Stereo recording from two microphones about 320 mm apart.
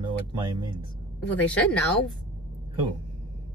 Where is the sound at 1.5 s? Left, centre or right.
Centre.